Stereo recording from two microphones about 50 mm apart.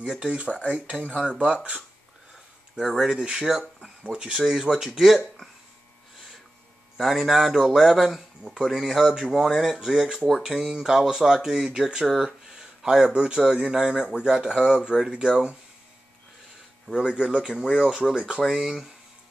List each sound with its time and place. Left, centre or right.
0.0 s speech: centre
0.7 s speech: right
2.8 s speech: centre
7.0 s speech: centre
16.9 s speech: centre
18.0 s speech: centre